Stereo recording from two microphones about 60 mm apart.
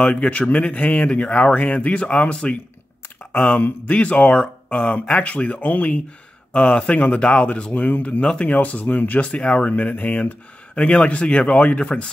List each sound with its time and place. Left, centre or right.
0.0 s speech: centre